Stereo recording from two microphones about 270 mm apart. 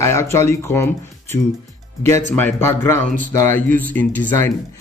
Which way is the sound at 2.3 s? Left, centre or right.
Centre.